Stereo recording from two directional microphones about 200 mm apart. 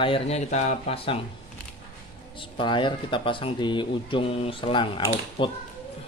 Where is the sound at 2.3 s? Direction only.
25° left (ahead or behind).